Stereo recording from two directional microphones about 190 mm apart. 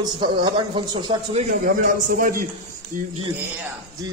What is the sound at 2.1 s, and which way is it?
Speech, 45° right (ahead or behind).